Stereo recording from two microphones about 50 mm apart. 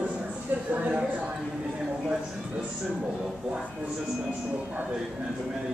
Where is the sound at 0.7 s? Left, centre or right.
Right.